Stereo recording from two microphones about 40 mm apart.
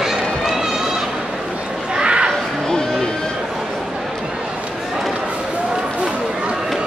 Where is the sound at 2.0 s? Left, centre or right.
Right.